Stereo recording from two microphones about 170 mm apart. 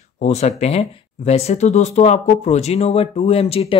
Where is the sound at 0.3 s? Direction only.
40° left (ahead or behind).